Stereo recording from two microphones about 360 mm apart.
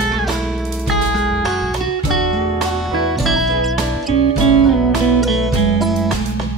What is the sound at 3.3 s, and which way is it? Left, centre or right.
Music, centre.